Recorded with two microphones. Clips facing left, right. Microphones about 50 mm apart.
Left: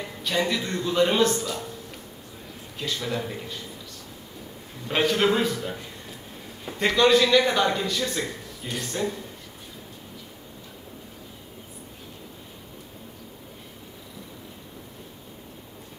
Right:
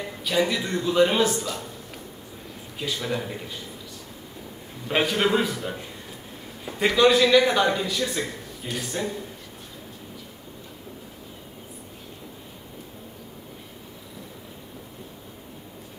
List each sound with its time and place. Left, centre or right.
0.2 s a man's voice: centre
2.8 s speech: centre
4.8 s a man's voice: centre